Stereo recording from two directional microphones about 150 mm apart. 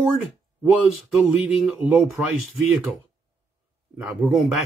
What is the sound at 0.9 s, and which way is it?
Speech, centre (ahead or behind).